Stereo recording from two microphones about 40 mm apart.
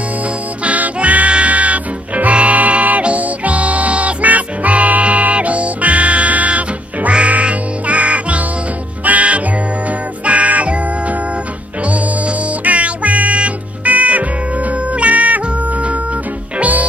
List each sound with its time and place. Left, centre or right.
0.7 s music: right
12.6 s music: right